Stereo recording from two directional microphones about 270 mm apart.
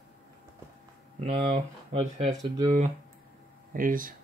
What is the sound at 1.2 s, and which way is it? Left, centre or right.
Speech, right.